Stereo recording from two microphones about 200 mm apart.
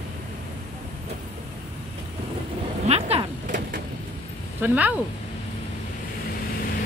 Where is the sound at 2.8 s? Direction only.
30° right (ahead or behind).